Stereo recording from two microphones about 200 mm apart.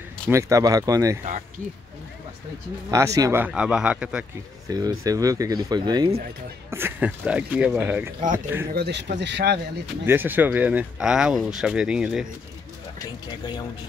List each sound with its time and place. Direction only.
0.3 s speech: 15° right (ahead or behind)
2.9 s speech: 15° right (ahead or behind)
4.6 s speech: 20° right (ahead or behind)
8.7 s speech: 55° right (ahead or behind)
10.0 s speech: 10° right (ahead or behind)